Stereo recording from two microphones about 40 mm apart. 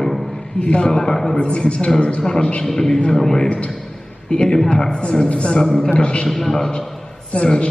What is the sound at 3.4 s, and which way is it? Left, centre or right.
Speech, left.